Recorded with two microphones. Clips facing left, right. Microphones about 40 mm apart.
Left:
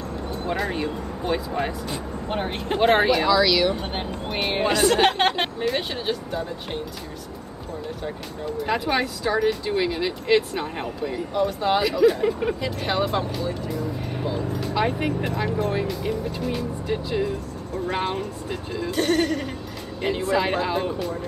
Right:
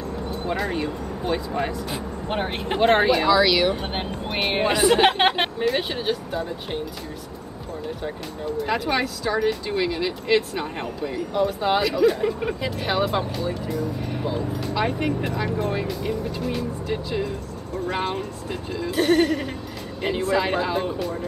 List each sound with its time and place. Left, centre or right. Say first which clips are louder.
0.5 s speech: even; centre
2.2 s speech: right 1 dB; centre
2.8 s speech: even; centre
3.3 s a woman's voice: right 1 dB; centre
8.6 s speech: left 1 dB; centre